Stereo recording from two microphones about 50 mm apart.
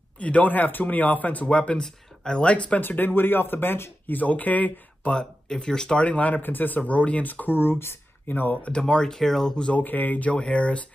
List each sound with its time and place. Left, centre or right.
0.2 s speech: left
1.8 s speech: centre
2.8 s speech: left
4.2 s speech: left
5.1 s speech: centre
6.0 s speech: left
8.6 s speech: centre
9.8 s speech: left
10.3 s speech: left